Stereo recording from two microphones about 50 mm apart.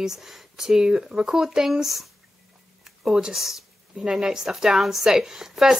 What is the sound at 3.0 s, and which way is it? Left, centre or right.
Speech, centre.